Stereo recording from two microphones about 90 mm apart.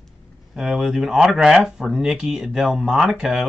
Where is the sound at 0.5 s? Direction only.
5° right (ahead or behind).